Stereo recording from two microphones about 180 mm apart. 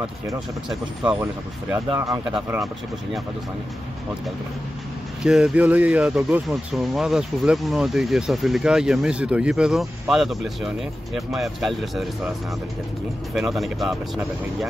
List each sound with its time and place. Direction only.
2.0 s speech: 15° right (ahead or behind)
5.2 s speech: 5° right (ahead or behind)
13.3 s speech: centre (ahead or behind)